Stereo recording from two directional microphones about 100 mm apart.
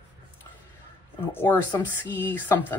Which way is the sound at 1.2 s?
20° left (ahead or behind).